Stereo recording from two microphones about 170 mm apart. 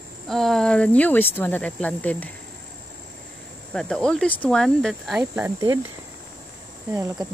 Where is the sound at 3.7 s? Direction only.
5° left (ahead or behind).